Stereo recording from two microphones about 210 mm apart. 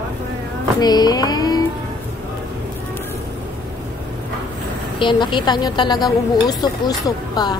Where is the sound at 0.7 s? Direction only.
20° left (ahead or behind).